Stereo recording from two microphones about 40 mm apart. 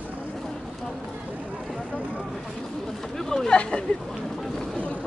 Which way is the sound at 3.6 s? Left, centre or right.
Left.